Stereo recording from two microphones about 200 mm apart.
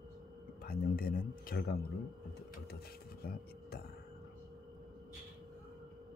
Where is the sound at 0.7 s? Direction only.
50° left (ahead or behind).